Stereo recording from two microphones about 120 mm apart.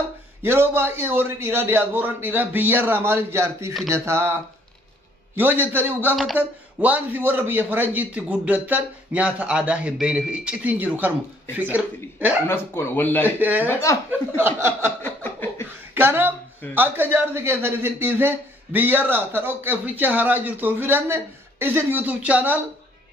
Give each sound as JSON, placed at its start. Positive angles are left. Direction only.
{"t": 0.4, "sound": "a man's voice", "side_deg": -20}
{"t": 3.9, "sound": "chuckle", "side_deg": -20}
{"t": 5.3, "sound": "a man's voice", "side_deg": -15}
{"t": 12.4, "sound": "speech", "side_deg": 20}
{"t": 13.4, "sound": "a man's voice", "side_deg": -15}
{"t": 13.7, "sound": "speech", "side_deg": 25}
{"t": 14.3, "sound": "chuckle", "side_deg": -20}
{"t": 15.0, "sound": "a sound", "side_deg": 15}
{"t": 15.9, "sound": "a man's voice", "side_deg": -20}